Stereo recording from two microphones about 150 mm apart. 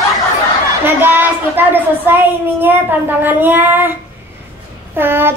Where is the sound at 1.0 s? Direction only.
15° right (ahead or behind).